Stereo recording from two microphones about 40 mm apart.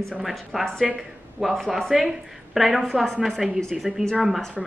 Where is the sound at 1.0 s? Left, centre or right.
Centre.